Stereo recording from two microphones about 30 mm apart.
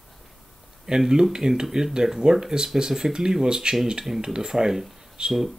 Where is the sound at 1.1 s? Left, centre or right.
Right.